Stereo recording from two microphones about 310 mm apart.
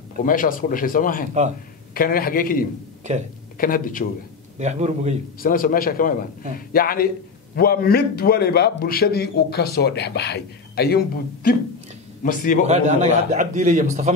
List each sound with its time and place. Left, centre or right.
0.2 s speech: left
4.6 s a man's voice: right
5.4 s a man's voice: left
12.2 s speech: left
12.6 s a man's voice: right